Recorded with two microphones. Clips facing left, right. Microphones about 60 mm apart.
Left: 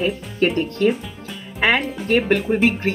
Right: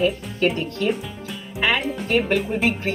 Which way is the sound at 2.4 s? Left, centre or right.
Left.